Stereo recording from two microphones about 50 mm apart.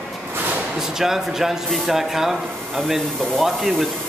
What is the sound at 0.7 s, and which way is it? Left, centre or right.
A woman's voice, centre.